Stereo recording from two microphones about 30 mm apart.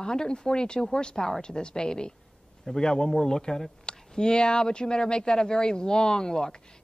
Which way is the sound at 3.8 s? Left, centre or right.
Left.